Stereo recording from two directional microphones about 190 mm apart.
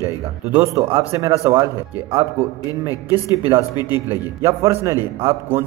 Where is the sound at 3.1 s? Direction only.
10° right (ahead or behind).